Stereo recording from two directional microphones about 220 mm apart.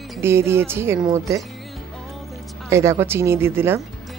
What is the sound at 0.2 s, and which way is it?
Speech, 10° right (ahead or behind).